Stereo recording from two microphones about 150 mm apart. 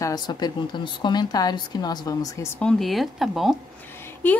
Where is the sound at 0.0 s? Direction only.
25° left (ahead or behind).